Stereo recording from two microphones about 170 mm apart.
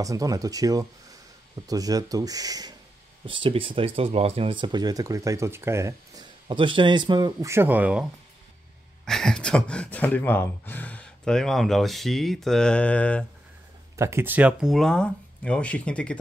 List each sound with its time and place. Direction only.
0.0 s speech: 20° right (ahead or behind)
6.5 s speech: 30° right (ahead or behind)
7.5 s speech: 10° right (ahead or behind)
9.0 s speech: 5° left (ahead or behind)
13.9 s speech: 15° right (ahead or behind); by 16.2 s 5° left (ahead or behind)